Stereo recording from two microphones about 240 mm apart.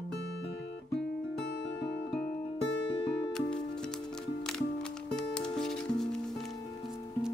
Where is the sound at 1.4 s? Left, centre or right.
Left.